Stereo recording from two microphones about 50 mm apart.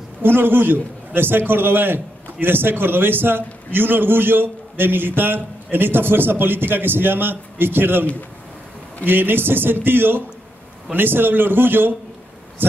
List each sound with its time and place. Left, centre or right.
0.2 s a man's voice: right